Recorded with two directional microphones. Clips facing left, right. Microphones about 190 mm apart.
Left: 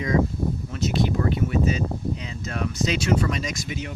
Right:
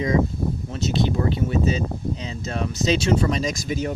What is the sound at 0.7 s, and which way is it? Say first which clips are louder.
Speech: right 1 dB; 25° right (ahead or behind).